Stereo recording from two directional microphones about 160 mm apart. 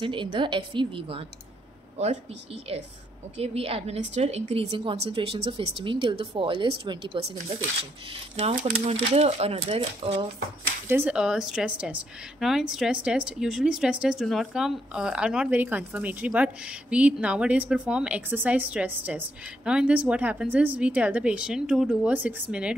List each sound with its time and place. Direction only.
0.0 s a woman's voice: 30° right (ahead or behind)
2.7 s a woman's voice: 40° right (ahead or behind)
8.4 s a woman's voice: 45° right (ahead or behind)
10.9 s a woman's voice: 10° right (ahead or behind)